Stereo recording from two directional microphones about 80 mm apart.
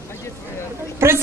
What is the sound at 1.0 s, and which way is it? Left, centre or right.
Speech, right.